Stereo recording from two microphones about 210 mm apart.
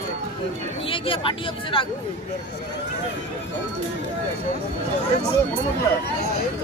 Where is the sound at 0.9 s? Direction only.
25° left (ahead or behind).